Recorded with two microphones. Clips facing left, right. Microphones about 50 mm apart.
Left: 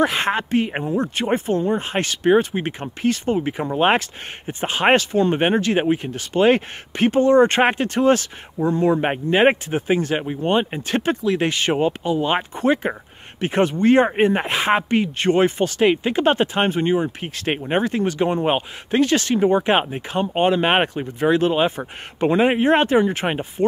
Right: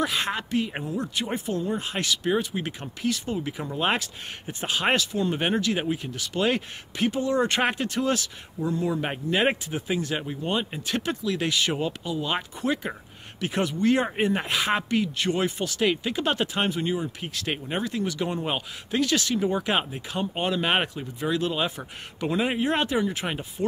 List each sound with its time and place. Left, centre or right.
0.0 s speech: left
10.1 s speech: left
10.4 s speech: left